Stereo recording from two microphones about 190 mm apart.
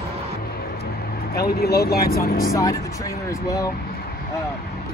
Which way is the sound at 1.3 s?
55° left (ahead or behind).